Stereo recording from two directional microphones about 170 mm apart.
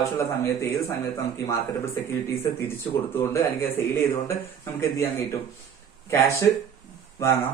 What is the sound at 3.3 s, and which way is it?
Speech, 15° left (ahead or behind).